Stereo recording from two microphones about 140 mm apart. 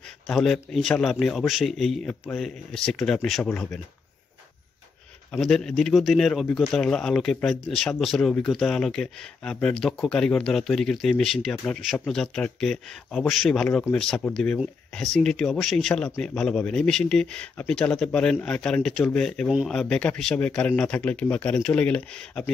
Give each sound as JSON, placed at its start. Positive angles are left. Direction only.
{"t": 0.3, "sound": "speech", "side_deg": 5}
{"t": 5.4, "sound": "speech", "side_deg": 5}
{"t": 19.5, "sound": "speech", "side_deg": -5}
{"t": 19.8, "sound": "speech", "side_deg": 5}